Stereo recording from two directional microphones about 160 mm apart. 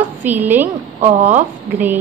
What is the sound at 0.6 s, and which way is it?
Speech, 50° right (ahead or behind).